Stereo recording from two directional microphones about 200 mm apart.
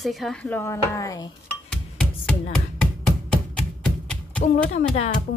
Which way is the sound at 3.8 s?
5° left (ahead or behind).